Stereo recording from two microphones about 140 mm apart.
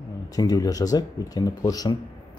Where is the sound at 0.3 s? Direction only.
25° left (ahead or behind).